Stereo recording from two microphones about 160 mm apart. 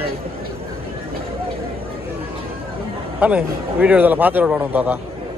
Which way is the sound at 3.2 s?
10° right (ahead or behind).